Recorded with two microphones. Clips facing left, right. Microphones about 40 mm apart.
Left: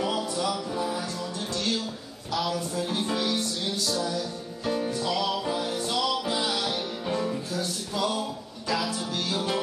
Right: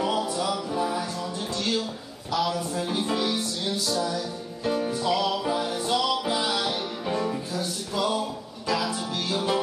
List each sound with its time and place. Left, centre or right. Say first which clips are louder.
0.0 s music: right 2 dB; centre
1.6 s a sound: right 2 dB; centre
2.7 s music: right 1 dB; centre